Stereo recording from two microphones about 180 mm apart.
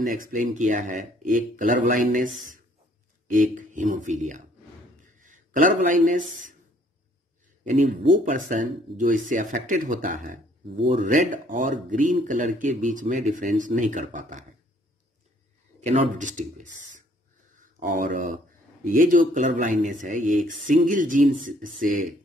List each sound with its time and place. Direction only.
0.0 s a man's voice: 50° right (ahead or behind)
7.6 s speech: 45° right (ahead or behind)
15.8 s speech: 35° right (ahead or behind)